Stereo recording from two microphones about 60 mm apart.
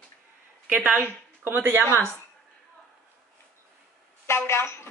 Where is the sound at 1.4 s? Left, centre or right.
Right.